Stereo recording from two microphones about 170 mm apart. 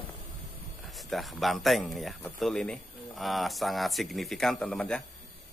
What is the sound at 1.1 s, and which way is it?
Speech, centre (ahead or behind).